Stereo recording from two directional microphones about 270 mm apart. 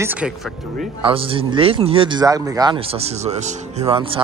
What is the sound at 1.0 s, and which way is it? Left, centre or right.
Speech, centre.